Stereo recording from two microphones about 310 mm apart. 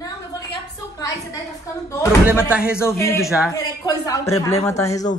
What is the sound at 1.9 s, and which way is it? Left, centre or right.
Speech, centre.